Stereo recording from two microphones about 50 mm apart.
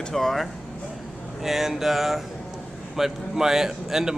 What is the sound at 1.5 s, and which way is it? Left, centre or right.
Speech, centre.